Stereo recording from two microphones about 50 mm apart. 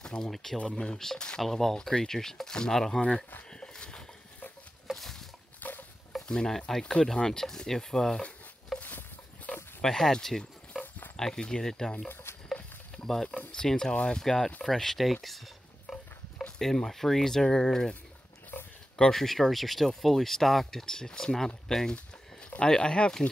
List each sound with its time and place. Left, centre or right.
0.0 s speech: centre
3.4 s a sound: centre
4.8 s patter: centre
5.6 s a sound: left
6.2 s speech: centre
9.8 s speech: centre
12.1 s a sound: left
12.9 s speech: centre
15.9 s a sound: centre
16.5 s speech: centre
18.9 s speech: centre
21.9 s speech: left